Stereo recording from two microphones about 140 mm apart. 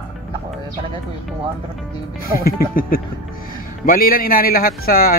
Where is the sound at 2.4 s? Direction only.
90° left.